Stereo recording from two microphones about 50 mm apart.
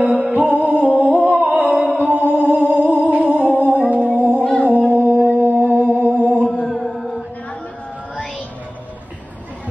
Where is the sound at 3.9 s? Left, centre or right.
Right.